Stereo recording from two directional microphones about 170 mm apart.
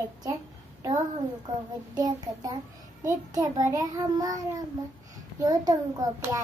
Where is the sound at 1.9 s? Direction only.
25° right (ahead or behind).